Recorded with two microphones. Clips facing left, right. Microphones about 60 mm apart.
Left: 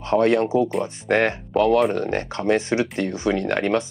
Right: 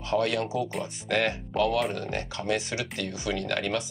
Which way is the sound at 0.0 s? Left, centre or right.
Left.